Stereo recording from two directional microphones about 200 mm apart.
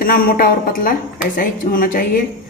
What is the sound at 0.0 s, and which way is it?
Speech, 45° left (ahead or behind).